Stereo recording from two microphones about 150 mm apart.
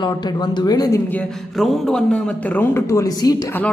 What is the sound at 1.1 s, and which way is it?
Speech, 5° left (ahead or behind).